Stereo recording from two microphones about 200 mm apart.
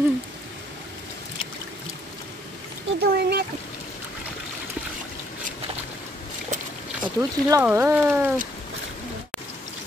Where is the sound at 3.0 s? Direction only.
50° right (ahead or behind).